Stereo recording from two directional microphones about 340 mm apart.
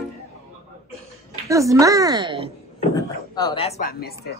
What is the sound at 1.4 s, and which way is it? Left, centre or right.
Speech, centre.